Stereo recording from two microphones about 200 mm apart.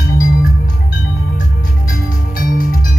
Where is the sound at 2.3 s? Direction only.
45° left (ahead or behind).